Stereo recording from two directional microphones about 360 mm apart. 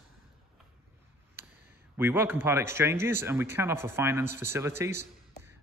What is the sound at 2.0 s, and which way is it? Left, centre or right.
A man's voice, centre.